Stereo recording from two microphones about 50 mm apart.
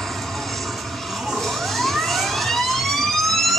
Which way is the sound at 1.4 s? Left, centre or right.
Centre.